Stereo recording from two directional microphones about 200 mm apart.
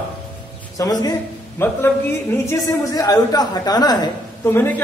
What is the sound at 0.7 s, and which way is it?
A man's voice, 20° left (ahead or behind).